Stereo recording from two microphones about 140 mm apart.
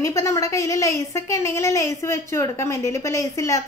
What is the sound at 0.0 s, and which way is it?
A woman's voice, 20° left (ahead or behind).